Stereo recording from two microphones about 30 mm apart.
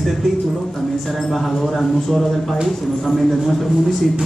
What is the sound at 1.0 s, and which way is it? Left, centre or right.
A man's voice, centre.